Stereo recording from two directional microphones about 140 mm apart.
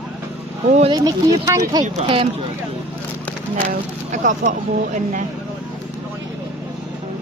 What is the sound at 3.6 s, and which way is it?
Speech, 70° right (ahead or behind).